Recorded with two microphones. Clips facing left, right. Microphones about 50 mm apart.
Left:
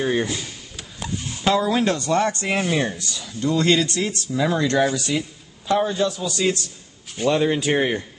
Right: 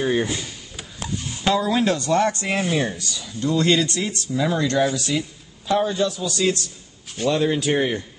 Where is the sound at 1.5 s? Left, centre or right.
Centre.